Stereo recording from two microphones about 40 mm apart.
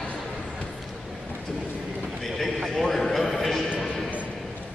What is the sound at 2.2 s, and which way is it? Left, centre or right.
Clip-clop, centre.